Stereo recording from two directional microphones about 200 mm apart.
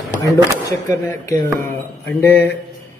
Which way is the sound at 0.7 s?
15° left (ahead or behind).